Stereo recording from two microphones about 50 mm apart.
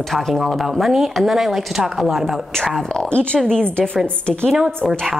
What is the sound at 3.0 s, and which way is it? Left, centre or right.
Speech, centre.